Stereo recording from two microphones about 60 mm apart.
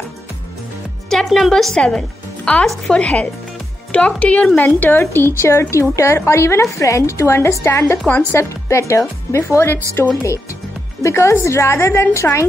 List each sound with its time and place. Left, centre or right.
1.1 s speech: centre
2.5 s speech: left
5.1 s a woman's voice: left